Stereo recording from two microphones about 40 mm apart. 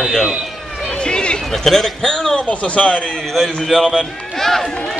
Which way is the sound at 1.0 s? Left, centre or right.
Left.